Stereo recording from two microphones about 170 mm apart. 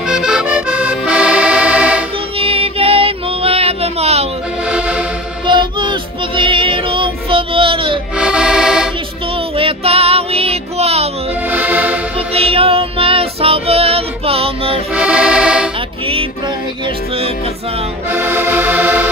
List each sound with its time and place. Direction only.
0.1 s accordion: 5° right (ahead or behind)
2.3 s music: 35° right (ahead or behind)
4.6 s music: 5° right (ahead or behind)
5.5 s child singing: 30° right (ahead or behind)
8.2 s music: 5° right (ahead or behind)
9.6 s music: 35° right (ahead or behind)
11.5 s accordion: 10° right (ahead or behind)
12.4 s music: 35° right (ahead or behind)
15.0 s accordion: 5° right (ahead or behind)
18.1 s accordion: 15° right (ahead or behind)